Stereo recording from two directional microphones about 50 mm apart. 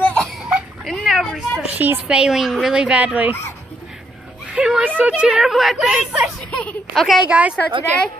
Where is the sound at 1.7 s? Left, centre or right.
Right.